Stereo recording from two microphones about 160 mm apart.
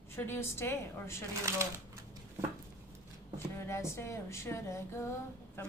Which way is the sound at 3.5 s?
15° left (ahead or behind).